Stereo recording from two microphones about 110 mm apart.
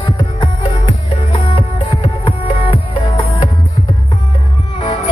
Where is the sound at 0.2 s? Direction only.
45° left (ahead or behind).